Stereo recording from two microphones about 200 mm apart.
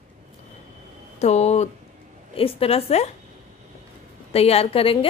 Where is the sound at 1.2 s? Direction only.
35° left (ahead or behind).